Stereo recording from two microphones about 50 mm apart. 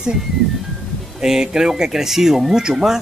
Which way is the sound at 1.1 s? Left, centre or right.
Centre.